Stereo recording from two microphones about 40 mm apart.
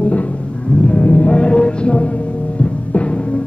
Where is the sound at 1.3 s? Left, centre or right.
Left.